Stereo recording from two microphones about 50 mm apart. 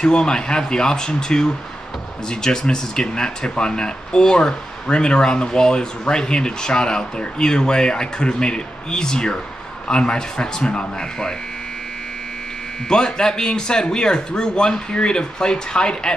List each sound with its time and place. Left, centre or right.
0.0 s speech: centre
12.8 s speech: centre